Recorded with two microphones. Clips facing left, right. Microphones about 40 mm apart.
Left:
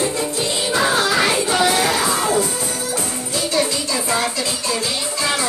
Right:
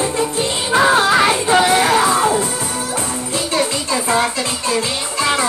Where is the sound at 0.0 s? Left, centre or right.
Right.